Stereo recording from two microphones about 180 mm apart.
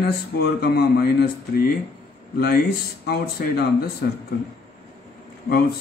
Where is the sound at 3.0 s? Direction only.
60° left (ahead or behind).